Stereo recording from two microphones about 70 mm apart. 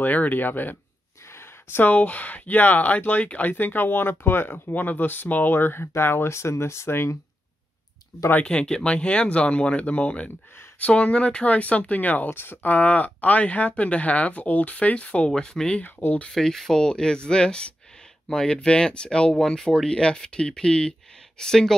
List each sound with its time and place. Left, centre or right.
0.0 s speech: left
8.5 s speech: centre
15.8 s speech: left
16.3 s speech: centre